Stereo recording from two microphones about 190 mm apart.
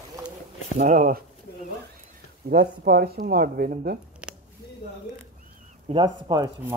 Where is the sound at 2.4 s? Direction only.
50° right (ahead or behind).